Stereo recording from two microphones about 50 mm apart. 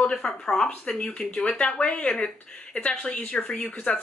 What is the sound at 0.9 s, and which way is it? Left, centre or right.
Speech, centre.